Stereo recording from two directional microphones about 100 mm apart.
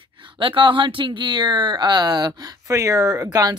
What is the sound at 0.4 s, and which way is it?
Speech, 55° right (ahead or behind).